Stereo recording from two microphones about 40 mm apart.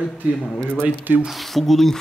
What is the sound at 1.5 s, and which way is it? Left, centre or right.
Speech, centre.